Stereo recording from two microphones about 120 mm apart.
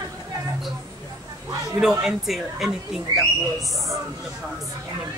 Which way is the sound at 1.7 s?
5° right (ahead or behind).